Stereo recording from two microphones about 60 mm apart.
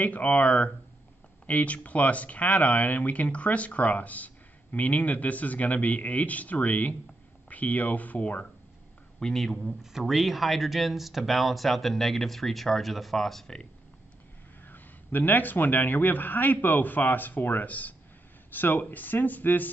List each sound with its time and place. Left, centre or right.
0.0 s speech: left
9.2 s speech: centre
14.7 s speech: left